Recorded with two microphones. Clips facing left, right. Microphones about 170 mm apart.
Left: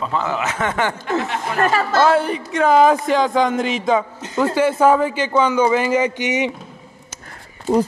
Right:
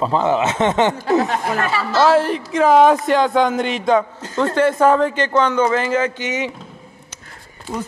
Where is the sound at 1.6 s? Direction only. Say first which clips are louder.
Left 3 dB; 45° left (ahead or behind).